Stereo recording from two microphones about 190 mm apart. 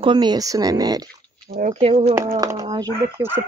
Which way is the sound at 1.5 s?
40° right (ahead or behind).